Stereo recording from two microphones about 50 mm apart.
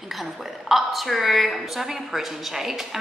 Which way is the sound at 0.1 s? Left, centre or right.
Centre.